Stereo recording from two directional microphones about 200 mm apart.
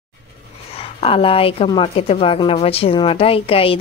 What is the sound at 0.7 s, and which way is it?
A woman's voice, 30° left (ahead or behind).